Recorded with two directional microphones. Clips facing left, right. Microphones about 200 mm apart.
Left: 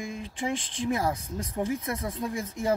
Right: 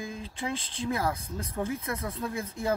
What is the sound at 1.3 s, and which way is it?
Speech, 15° left (ahead or behind).